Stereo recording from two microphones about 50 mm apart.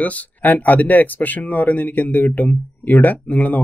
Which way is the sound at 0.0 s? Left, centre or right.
Left.